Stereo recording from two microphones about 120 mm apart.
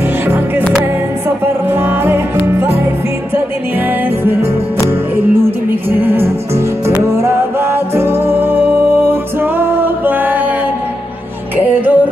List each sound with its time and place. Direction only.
1.4 s music: 20° right (ahead or behind)
4.2 s music: 20° right (ahead or behind)
11.5 s music: 15° right (ahead or behind)